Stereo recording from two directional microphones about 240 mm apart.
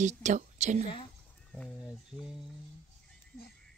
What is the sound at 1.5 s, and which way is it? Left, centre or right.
Speech, centre.